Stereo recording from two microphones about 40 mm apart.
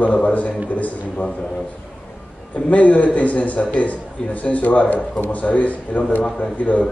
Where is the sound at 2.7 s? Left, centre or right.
Left.